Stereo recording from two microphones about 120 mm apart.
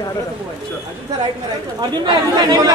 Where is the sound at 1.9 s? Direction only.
35° right (ahead or behind).